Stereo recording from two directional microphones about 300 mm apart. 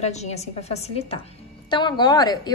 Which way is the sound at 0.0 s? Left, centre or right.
Left.